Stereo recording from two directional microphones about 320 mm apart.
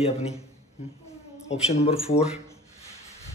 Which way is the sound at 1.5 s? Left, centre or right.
Centre.